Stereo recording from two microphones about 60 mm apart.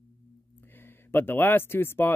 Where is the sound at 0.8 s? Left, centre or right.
Left.